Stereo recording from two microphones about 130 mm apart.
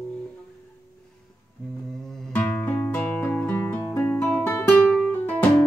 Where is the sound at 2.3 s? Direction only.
10° left (ahead or behind).